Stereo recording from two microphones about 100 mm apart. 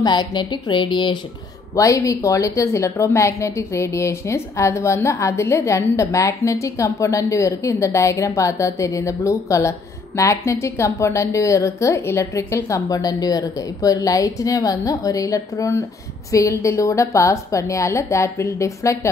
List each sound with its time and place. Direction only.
0.0 s a woman's voice: 45° left (ahead or behind)
1.8 s a woman's voice: 35° left (ahead or behind)